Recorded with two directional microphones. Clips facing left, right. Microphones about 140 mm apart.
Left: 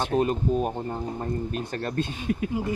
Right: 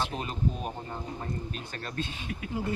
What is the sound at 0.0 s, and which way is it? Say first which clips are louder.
Speech: left 8 dB; 45° left (ahead or behind).